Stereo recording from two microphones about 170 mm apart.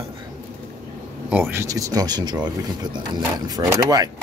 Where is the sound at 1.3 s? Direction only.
15° right (ahead or behind).